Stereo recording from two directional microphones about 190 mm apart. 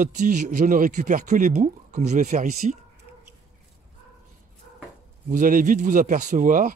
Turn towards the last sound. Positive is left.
turn(degrees=-45)  # may be behind; listen again after turning